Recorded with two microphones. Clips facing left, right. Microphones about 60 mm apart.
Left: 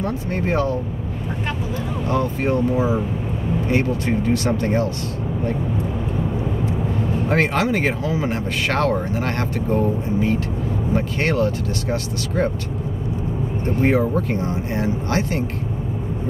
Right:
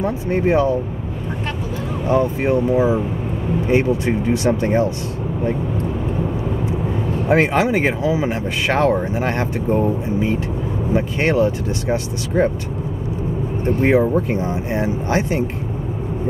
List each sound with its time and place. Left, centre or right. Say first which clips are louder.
0.0 s speech: right 5 dB; centre
2.0 s speech: right 4 dB; centre
7.2 s speech: right 4 dB; centre
13.8 s speech: right 3 dB; centre